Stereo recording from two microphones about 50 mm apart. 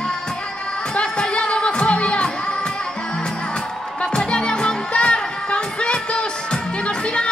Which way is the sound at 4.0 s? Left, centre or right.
Centre.